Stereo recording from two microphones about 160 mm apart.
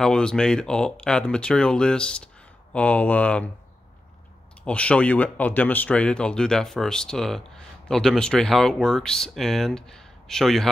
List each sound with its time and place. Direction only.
0.0 s speech: 5° left (ahead or behind)
4.6 s speech: 5° left (ahead or behind)